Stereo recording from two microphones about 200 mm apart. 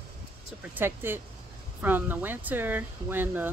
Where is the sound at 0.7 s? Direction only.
10° right (ahead or behind).